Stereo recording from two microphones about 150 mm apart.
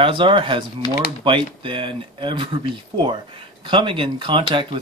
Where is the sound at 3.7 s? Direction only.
35° right (ahead or behind).